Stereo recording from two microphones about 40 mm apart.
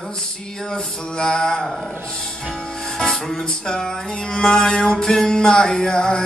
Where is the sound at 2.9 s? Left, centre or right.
Centre.